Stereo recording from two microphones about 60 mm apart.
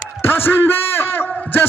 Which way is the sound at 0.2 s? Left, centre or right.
Left.